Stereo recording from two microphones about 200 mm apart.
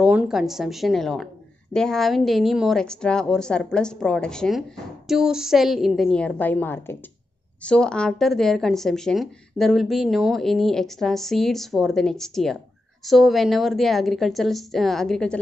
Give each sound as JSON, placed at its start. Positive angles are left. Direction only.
{"t": 0.0, "sound": "a woman's voice", "side_deg": -5}